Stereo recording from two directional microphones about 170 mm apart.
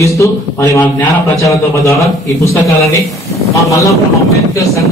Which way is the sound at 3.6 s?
20° left (ahead or behind).